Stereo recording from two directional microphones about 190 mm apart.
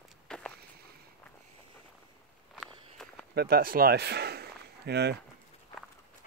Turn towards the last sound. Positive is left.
turn(degrees=-60)  # may be behind; listen again after turning